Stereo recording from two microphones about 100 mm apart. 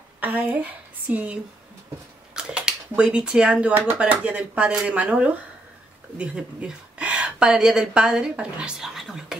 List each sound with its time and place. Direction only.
0.2 s a woman's voice: 15° right (ahead or behind)